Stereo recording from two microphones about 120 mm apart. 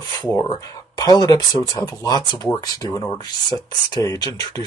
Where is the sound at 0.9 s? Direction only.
30° left (ahead or behind).